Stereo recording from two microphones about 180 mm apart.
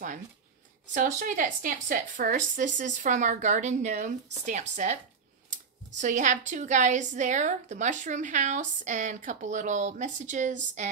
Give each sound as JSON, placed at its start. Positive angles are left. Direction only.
{"t": 0.9, "sound": "a woman's voice", "side_deg": -45}
{"t": 5.9, "sound": "a woman's voice", "side_deg": -45}